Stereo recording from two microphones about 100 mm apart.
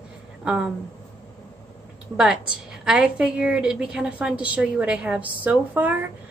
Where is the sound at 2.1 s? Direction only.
10° right (ahead or behind).